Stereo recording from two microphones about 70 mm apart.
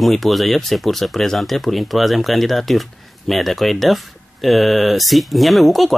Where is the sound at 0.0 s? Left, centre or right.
Centre.